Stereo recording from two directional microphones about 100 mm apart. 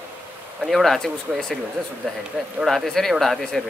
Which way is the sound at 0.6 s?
Centre (ahead or behind).